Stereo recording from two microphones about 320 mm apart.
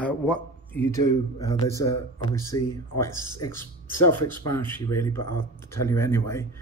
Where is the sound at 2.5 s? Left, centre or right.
Left.